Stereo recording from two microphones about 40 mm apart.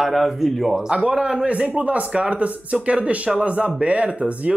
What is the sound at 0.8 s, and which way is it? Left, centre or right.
A man's voice, right.